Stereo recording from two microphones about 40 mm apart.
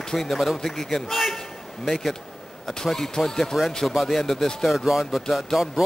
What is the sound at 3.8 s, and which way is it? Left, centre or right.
Speech, centre.